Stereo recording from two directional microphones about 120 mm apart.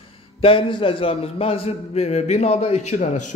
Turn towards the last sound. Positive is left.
turn(degrees=80)